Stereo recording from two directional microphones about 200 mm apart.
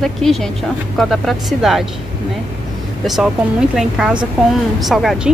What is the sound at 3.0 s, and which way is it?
Speech, centre (ahead or behind).